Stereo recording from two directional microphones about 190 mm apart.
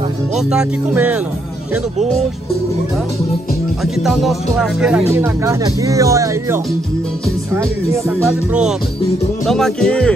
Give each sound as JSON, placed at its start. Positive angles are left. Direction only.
{"t": 0.5, "sound": "speech", "side_deg": -5}
{"t": 3.8, "sound": "music", "side_deg": 0}
{"t": 5.1, "sound": "speech", "side_deg": -15}
{"t": 9.5, "sound": "music", "side_deg": 0}